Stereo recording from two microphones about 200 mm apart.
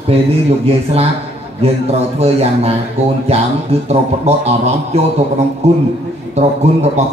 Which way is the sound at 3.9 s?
30° right (ahead or behind).